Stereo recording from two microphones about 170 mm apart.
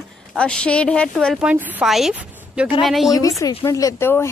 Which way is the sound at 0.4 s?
5° left (ahead or behind).